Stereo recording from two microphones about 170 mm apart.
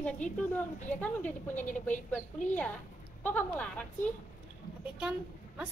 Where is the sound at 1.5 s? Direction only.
45° left (ahead or behind).